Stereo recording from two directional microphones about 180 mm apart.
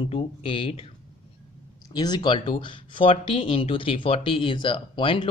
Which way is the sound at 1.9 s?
20° left (ahead or behind).